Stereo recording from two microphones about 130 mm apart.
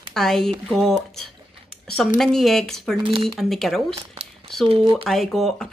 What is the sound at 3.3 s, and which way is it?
Speech, centre (ahead or behind).